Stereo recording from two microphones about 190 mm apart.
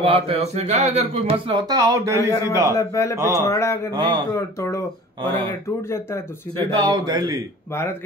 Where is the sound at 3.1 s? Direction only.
15° right (ahead or behind).